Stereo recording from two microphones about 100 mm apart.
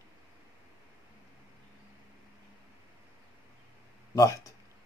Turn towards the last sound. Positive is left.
turn(degrees=35)  # may be behind; listen again after turning